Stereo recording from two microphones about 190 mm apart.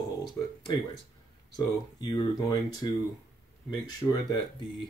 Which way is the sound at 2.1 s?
25° left (ahead or behind).